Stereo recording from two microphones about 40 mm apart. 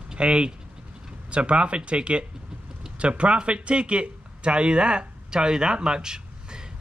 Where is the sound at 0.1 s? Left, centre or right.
Right.